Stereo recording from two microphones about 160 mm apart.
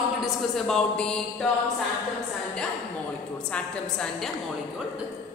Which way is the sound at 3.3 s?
5° left (ahead or behind).